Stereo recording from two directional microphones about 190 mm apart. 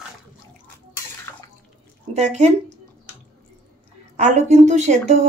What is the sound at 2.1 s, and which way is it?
Speech, 35° right (ahead or behind).